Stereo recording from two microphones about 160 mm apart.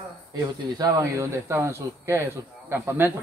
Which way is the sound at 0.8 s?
20° right (ahead or behind).